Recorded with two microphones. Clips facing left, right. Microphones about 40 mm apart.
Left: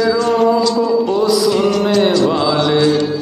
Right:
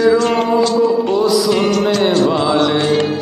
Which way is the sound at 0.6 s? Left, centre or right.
Right.